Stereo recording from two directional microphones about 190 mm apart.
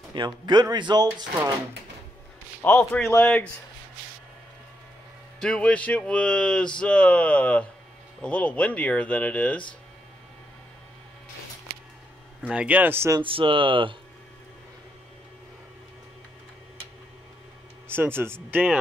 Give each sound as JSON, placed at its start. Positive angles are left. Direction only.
{"t": 0.1, "sound": "speech", "side_deg": -25}
{"t": 2.6, "sound": "speech", "side_deg": 10}
{"t": 5.4, "sound": "speech", "side_deg": 5}
{"t": 12.4, "sound": "speech", "side_deg": -5}
{"t": 13.2, "sound": "speech", "side_deg": -25}
{"t": 17.8, "sound": "speech", "side_deg": -10}